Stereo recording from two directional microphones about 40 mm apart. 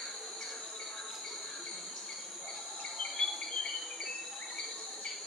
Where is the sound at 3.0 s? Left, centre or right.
Centre.